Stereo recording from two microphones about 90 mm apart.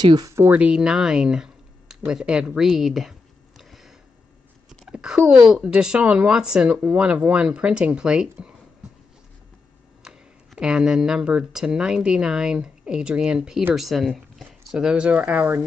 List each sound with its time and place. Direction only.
0.0 s speech: 50° right (ahead or behind)
0.3 s speech: 25° right (ahead or behind)
0.6 s speech: 10° right (ahead or behind)
10.0 s speech: 10° right (ahead or behind)